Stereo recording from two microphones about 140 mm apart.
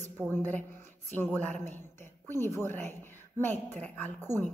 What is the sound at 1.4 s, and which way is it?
Speech, 15° left (ahead or behind).